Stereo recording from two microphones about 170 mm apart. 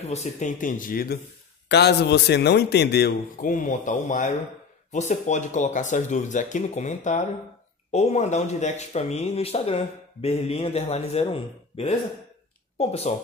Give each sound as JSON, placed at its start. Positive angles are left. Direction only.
{"t": 0.0, "sound": "speech", "side_deg": 40}
{"t": 1.7, "sound": "a man's voice", "side_deg": 75}